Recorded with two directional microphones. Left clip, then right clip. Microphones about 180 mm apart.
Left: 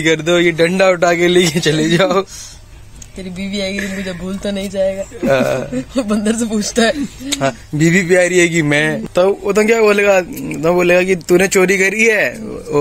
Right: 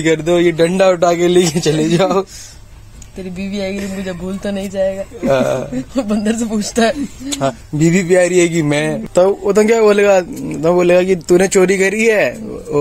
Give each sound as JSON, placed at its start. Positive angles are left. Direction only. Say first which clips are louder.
{"t": 0.0, "sound": "a man's voice", "louder": "even", "side_deg": -15}
{"t": 3.3, "sound": "music", "louder": "left 1 dB", "side_deg": -25}
{"t": 3.7, "sound": "a man's voice", "louder": "left 1 dB", "side_deg": -15}
{"t": 7.3, "sound": "speech", "louder": "even", "side_deg": 0}
{"t": 7.8, "sound": "a man's voice", "louder": "even", "side_deg": -10}
{"t": 9.1, "sound": "a man's voice", "louder": "right 3 dB", "side_deg": -20}